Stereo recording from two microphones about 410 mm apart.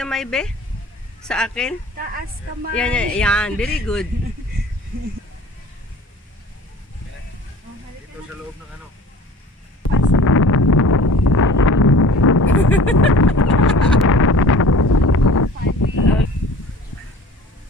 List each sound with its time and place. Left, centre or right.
0.0 s speech: centre
2.8 s speech: centre
9.9 s wind: left